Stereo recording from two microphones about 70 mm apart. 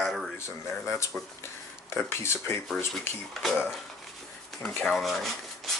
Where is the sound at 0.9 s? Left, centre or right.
Left.